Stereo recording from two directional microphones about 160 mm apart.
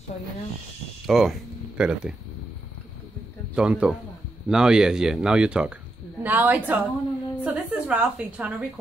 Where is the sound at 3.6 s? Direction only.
5° right (ahead or behind).